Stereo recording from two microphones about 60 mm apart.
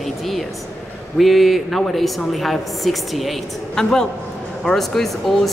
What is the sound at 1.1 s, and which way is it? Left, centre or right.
A woman's voice, centre.